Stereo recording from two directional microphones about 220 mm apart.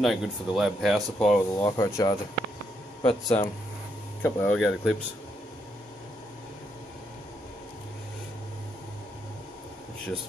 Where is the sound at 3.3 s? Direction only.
10° left (ahead or behind).